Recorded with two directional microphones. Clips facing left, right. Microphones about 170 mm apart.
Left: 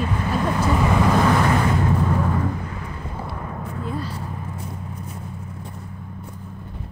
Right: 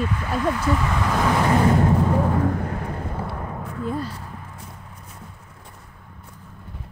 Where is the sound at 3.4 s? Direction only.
5° right (ahead or behind).